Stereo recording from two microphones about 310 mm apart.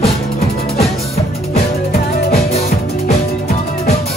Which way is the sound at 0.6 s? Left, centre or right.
Left.